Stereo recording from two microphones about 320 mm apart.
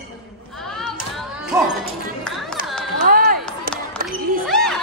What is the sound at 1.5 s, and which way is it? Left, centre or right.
Speech, centre.